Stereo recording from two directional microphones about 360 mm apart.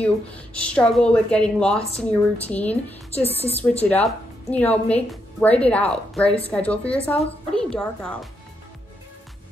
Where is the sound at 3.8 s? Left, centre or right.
Centre.